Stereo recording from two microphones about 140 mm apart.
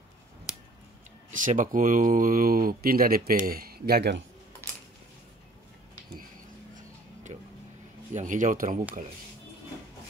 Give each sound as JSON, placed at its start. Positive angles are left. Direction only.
{"t": 1.3, "sound": "speech", "side_deg": -70}
{"t": 8.1, "sound": "speech", "side_deg": -60}